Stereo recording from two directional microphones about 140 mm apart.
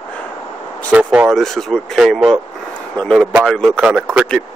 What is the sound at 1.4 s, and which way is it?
Speech, centre (ahead or behind).